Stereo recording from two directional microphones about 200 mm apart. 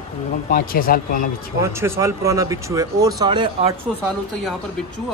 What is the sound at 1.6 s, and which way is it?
Speech, 15° right (ahead or behind).